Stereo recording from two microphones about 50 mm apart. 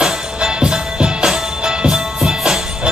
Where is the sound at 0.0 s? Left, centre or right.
Centre.